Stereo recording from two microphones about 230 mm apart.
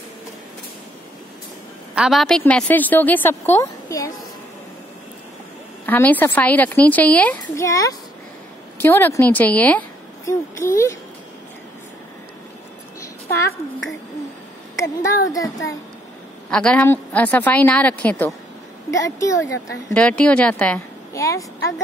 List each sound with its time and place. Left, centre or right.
2.0 s speech: centre
5.9 s a woman's voice: centre
13.5 s a woman's voice: left
14.8 s speech: centre
16.4 s speech: centre